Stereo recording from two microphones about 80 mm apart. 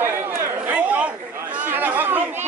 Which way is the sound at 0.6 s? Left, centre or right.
Right.